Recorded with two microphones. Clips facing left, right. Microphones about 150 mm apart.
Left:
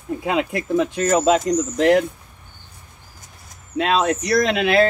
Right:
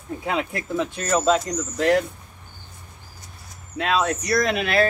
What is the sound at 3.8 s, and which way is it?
Speech, 20° left (ahead or behind).